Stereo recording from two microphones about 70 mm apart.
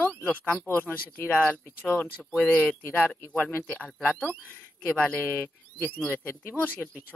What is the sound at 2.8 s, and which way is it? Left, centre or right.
Speech, left.